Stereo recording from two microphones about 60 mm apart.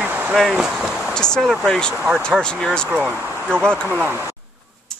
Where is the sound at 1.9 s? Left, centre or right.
Centre.